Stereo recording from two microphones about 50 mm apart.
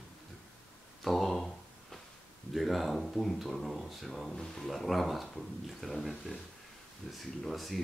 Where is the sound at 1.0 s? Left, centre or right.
Centre.